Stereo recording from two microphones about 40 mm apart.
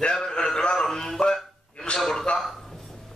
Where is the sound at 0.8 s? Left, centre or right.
Centre.